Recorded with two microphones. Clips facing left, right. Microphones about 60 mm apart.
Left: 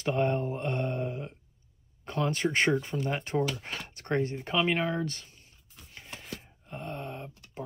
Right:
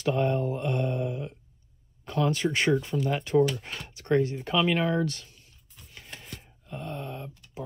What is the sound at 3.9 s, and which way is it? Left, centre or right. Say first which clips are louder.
Speech: right 5 dB; left.